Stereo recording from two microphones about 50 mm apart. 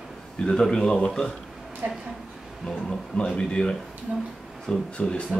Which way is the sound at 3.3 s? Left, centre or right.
Centre.